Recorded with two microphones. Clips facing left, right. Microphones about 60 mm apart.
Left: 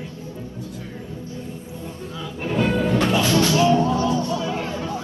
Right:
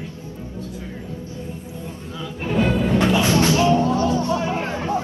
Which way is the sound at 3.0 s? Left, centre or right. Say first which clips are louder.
Right 2 dB; right.